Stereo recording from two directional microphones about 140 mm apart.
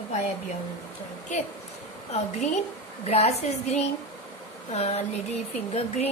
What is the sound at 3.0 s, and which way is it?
A woman's voice, 50° left (ahead or behind).